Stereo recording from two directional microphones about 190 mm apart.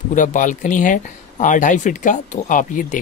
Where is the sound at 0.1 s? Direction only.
45° left (ahead or behind).